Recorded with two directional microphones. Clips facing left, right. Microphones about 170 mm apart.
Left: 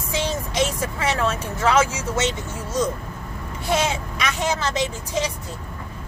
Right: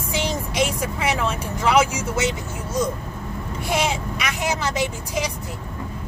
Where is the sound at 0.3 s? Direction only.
15° right (ahead or behind).